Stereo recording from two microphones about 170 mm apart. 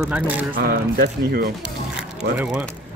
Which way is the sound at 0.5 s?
65° right (ahead or behind).